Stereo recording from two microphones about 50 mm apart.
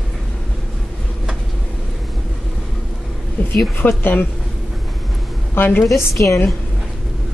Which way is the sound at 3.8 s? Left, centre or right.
Left.